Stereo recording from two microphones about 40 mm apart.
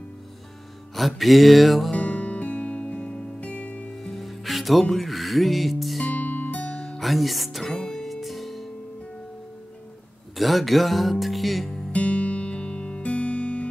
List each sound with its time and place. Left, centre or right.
0.9 s speech: centre
1.9 s music: left
3.9 s music: centre
4.9 s speech: centre
6.1 s music: left
6.7 s music: centre
10.3 s speech: centre
11.9 s music: left